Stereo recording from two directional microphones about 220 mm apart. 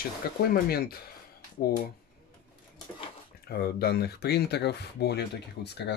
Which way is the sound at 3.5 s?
45° left (ahead or behind).